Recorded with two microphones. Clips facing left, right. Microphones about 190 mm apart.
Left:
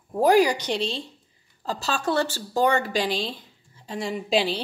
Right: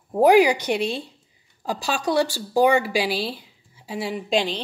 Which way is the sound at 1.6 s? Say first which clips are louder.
Right 2 dB; 10° right (ahead or behind).